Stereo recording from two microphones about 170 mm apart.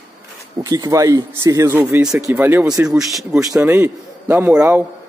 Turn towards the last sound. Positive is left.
turn(degrees=-10)  # may be behind; listen again after turning